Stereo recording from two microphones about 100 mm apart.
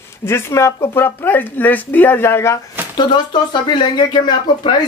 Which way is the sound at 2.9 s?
50° left (ahead or behind).